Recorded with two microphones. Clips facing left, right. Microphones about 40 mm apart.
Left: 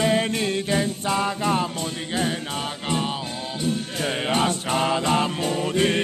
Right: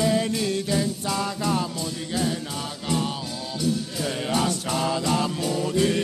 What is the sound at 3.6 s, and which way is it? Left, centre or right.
Music, left.